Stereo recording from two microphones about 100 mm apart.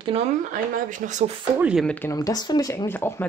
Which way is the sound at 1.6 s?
10° right (ahead or behind).